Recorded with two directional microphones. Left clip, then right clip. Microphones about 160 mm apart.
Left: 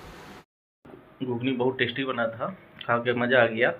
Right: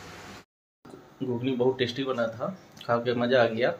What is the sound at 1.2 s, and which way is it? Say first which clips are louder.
Speech: even; 15° right (ahead or behind).